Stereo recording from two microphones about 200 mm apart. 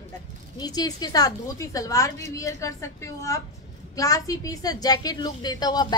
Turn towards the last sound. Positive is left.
turn(degrees=20)  # may be behind; listen again after turning